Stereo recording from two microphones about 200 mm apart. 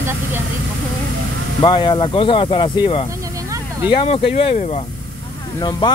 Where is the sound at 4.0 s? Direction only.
30° left (ahead or behind).